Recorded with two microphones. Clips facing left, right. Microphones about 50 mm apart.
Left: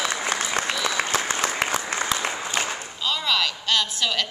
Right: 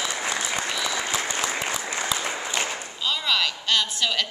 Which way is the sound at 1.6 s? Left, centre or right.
Left.